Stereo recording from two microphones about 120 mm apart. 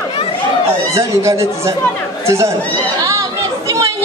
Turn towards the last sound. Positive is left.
turn(degrees=-25)  # may be behind; listen again after turning